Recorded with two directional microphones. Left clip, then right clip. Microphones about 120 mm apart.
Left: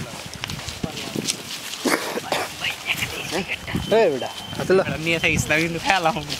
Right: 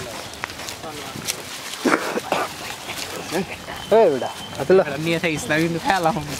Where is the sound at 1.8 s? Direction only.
30° left (ahead or behind).